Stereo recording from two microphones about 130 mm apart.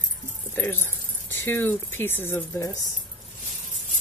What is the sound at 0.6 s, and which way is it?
Speech, 20° left (ahead or behind).